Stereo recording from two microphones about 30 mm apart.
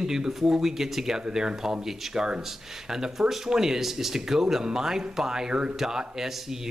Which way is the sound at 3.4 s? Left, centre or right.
Centre.